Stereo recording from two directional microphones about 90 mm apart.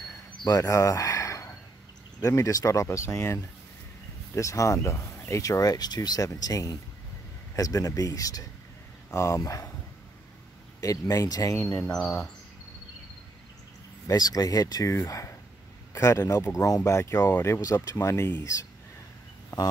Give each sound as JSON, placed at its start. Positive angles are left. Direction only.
{"t": 0.5, "sound": "speech", "side_deg": 35}
{"t": 10.8, "sound": "speech", "side_deg": 40}
{"t": 12.0, "sound": "speech", "side_deg": 5}
{"t": 14.0, "sound": "speech", "side_deg": 45}